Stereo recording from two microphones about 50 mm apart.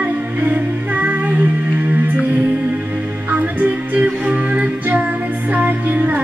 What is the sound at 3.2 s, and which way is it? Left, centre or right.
Music, right.